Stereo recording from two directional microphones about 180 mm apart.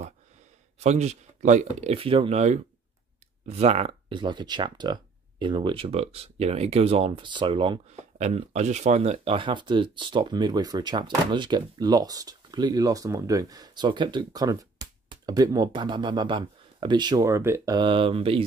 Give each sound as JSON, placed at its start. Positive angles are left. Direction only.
{"t": 0.7, "sound": "speech", "side_deg": -40}
{"t": 8.2, "sound": "speech", "side_deg": -40}